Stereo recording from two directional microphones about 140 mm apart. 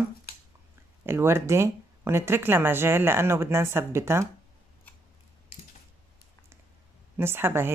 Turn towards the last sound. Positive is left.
turn(degrees=-15)  # may be behind; listen again after turning